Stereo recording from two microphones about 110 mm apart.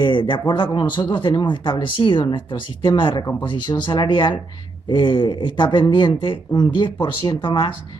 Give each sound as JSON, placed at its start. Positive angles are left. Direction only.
{"t": 0.0, "sound": "speech", "side_deg": 50}